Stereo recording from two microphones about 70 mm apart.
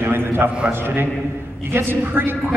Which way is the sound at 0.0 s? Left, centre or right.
Right.